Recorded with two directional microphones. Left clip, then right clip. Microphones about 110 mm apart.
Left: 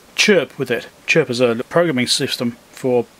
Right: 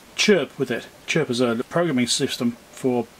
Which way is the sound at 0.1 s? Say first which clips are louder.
Left 5 dB; 35° left (ahead or behind).